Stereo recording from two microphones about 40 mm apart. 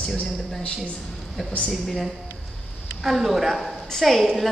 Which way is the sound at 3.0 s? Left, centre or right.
Centre.